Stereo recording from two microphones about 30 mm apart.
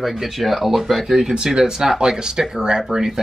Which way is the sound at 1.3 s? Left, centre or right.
Right.